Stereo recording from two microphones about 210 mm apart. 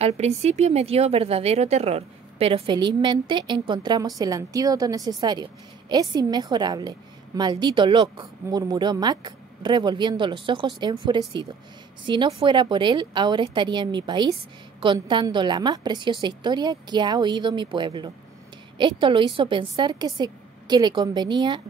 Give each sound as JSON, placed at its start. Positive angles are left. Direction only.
{"t": 0.0, "sound": "speech", "side_deg": -30}